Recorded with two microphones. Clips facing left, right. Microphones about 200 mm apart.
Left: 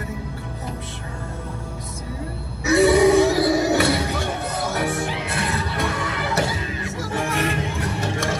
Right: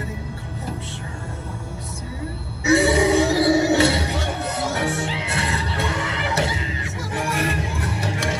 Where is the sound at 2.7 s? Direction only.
25° right (ahead or behind).